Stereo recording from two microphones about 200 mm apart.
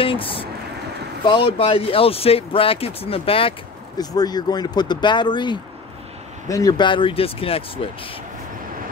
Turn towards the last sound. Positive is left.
turn(degrees=30)  # may be behind; listen again after turning